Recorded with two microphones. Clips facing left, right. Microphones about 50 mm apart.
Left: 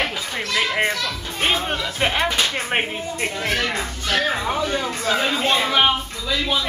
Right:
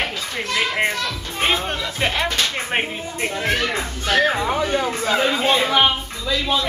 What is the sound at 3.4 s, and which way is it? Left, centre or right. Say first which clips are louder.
Speech: right 2 dB; right.